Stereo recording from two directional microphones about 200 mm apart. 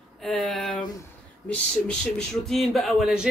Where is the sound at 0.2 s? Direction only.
Centre (ahead or behind).